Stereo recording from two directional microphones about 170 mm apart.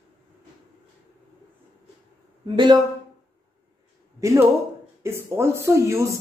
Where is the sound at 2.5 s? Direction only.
25° right (ahead or behind).